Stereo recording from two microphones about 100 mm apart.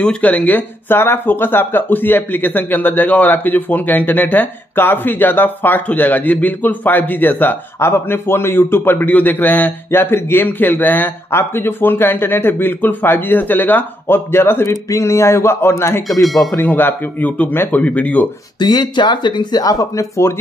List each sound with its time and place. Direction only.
0.0 s speech: 15° left (ahead or behind)
16.1 s speech: centre (ahead or behind)
16.5 s speech: 20° left (ahead or behind)
18.6 s speech: 45° left (ahead or behind)